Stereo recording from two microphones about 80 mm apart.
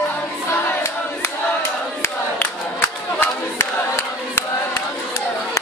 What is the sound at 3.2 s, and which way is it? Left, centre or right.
Battle cry, left.